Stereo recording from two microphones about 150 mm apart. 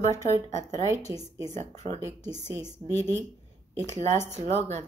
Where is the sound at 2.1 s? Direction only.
50° right (ahead or behind).